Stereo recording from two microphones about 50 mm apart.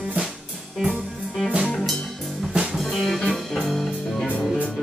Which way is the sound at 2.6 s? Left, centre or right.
Centre.